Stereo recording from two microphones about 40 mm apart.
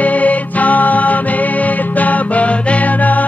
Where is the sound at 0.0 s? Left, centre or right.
Left.